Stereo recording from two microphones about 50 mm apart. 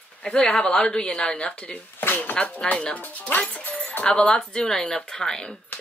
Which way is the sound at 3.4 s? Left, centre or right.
Left.